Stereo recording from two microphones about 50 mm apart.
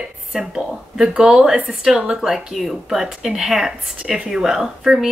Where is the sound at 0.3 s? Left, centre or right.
Centre.